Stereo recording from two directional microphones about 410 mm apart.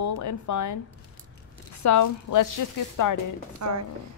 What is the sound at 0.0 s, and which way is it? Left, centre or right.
Speech, left.